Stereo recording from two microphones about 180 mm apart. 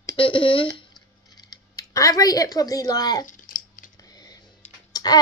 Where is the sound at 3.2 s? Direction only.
45° left (ahead or behind).